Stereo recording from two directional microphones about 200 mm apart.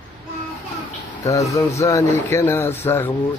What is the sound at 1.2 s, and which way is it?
Speech, 15° left (ahead or behind).